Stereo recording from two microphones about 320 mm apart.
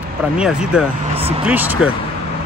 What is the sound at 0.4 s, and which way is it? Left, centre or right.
Speech, centre.